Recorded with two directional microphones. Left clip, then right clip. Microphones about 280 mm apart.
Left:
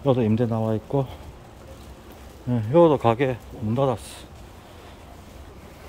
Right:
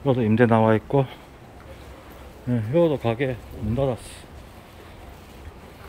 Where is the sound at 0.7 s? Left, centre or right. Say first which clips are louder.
Right 5 dB; centre.